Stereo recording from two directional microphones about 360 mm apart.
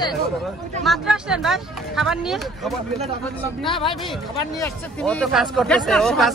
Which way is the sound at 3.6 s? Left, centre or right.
Centre.